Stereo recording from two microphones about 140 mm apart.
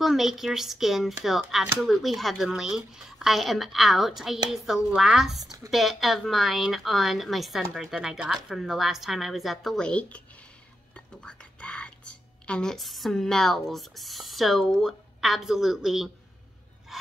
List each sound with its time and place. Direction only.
0.0 s a woman's voice: centre (ahead or behind)
5.4 s speech: 25° right (ahead or behind)
5.7 s a woman's voice: centre (ahead or behind)
11.2 s whispering: 10° left (ahead or behind)
12.4 s a woman's voice: 5° left (ahead or behind)
16.9 s a sound: centre (ahead or behind)